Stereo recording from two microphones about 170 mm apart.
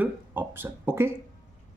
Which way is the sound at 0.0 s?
10° right (ahead or behind).